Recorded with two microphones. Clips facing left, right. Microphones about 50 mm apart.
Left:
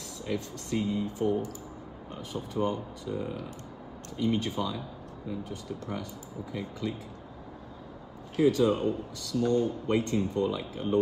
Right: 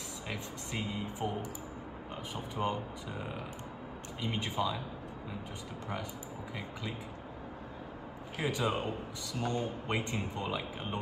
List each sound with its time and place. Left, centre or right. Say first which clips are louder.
0.3 s speech: left 9 dB; right
8.4 s speech: left 9 dB; right